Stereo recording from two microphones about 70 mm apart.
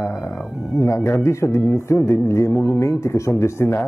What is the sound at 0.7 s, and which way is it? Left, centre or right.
Speech, left.